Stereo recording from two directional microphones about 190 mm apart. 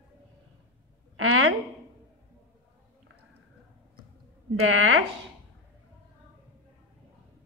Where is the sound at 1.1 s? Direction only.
90° right.